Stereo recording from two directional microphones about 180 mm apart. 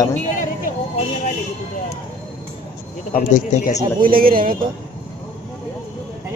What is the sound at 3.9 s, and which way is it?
Speech, 50° right (ahead or behind).